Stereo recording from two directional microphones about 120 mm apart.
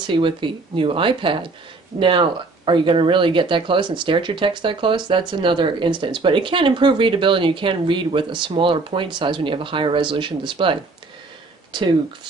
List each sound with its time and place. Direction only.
0.0 s speech: 45° right (ahead or behind)